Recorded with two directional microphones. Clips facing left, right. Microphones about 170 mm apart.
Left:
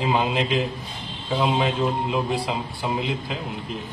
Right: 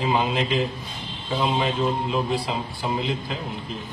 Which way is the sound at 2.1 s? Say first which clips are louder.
Even; 15° left (ahead or behind).